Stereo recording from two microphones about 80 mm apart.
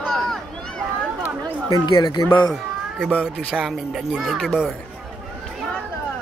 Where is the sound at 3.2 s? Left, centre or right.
Centre.